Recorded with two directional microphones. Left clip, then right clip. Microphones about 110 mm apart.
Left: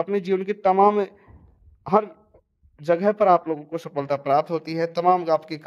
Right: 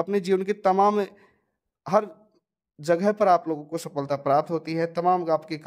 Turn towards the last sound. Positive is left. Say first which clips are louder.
# left 3 dB
turn(degrees=-20)  # may be behind; listen again after turning